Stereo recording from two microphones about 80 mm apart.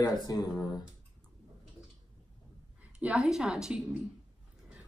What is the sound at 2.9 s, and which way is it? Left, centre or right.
Speech, centre.